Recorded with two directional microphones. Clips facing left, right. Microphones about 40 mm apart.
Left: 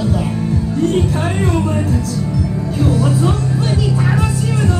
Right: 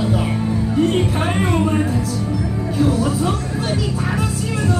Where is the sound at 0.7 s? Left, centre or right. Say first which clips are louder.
Left 1 dB; right.